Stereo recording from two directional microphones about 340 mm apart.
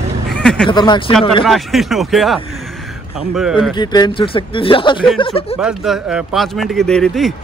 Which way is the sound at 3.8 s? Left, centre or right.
Centre.